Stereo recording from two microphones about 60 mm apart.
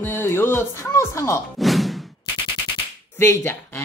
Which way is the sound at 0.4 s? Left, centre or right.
Left.